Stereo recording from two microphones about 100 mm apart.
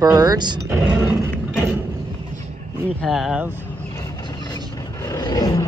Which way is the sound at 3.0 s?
Centre (ahead or behind).